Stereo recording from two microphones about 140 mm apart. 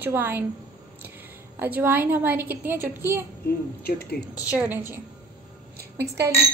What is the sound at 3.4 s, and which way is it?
Speech, 90° left.